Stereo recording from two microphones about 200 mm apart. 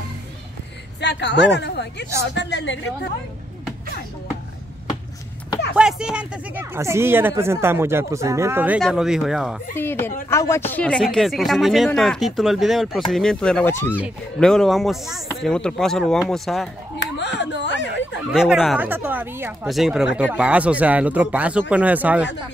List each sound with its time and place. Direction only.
1.0 s speech: 60° left (ahead or behind)
5.8 s speech: 5° right (ahead or behind)
9.8 s speech: 10° left (ahead or behind)
17.0 s a sound: 60° left (ahead or behind)
18.3 s speech: 5° right (ahead or behind)